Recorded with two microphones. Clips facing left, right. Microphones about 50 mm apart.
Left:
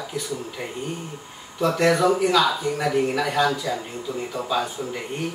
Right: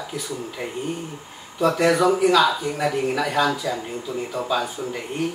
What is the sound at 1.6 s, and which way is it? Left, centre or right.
Speech, centre.